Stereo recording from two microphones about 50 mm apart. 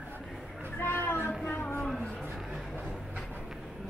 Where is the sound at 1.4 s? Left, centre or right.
Left.